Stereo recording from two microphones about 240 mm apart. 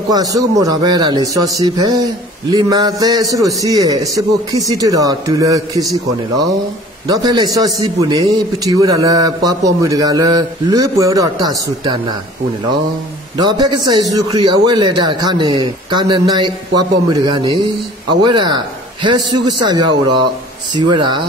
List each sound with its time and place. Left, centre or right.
0.1 s a man's voice: centre
7.1 s a man's voice: centre
13.4 s a man's voice: centre